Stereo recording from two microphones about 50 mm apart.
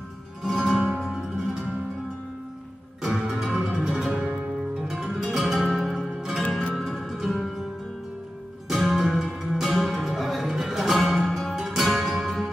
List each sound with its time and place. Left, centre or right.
0.4 s music: centre
3.2 s music: centre
3.9 s music: centre
6.7 s music: centre
8.6 s music: centre